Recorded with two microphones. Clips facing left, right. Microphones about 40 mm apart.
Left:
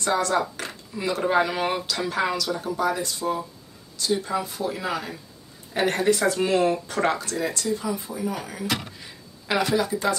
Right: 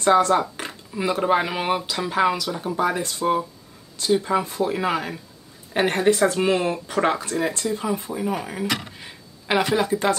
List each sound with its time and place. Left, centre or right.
0.0 s speech: right
9.8 s speech: right